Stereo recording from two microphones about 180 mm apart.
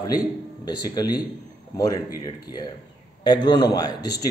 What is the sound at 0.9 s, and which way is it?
Speech, 20° left (ahead or behind).